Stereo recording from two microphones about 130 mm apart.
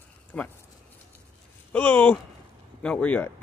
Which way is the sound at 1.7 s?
15° left (ahead or behind).